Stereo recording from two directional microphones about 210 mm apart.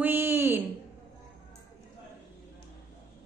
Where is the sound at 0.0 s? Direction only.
10° right (ahead or behind).